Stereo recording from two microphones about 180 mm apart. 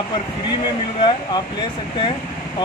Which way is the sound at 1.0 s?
25° left (ahead or behind).